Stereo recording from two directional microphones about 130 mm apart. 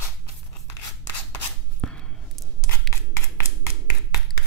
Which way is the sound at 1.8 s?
5° left (ahead or behind).